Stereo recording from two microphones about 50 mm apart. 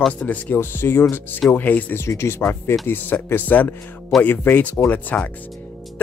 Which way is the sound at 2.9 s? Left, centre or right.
Left.